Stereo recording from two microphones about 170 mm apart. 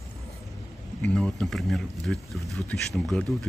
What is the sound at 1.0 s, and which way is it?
Speech, 5° left (ahead or behind).